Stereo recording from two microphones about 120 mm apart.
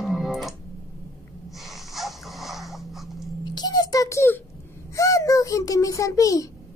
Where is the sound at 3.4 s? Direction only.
35° left (ahead or behind).